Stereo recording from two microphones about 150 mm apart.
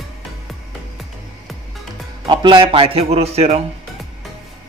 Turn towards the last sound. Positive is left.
turn(degrees=-45)  # may be behind; listen again after turning